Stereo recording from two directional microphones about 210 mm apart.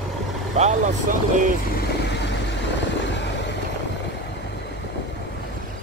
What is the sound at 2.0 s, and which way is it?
Vehicle, 55° left (ahead or behind).